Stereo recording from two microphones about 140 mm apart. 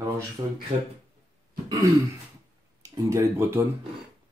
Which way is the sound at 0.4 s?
25° right (ahead or behind).